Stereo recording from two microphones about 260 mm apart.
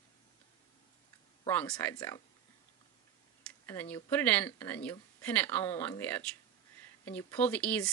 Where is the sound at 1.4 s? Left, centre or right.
Centre.